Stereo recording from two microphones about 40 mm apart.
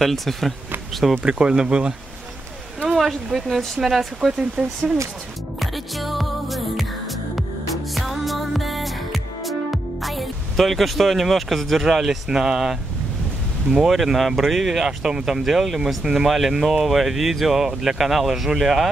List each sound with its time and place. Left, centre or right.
0.0 s speech: centre
1.2 s speech: right
3.0 s speech: centre
4.4 s speech: centre
5.6 s music: centre
10.0 s speech: centre
11.8 s speech: centre
13.7 s speech: centre